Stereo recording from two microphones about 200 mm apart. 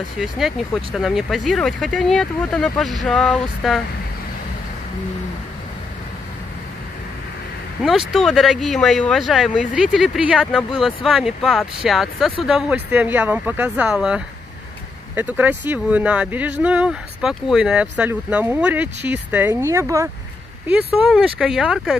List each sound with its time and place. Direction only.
0.2 s speech: centre (ahead or behind)
8.1 s speech: centre (ahead or behind)
20.6 s speech: 5° right (ahead or behind)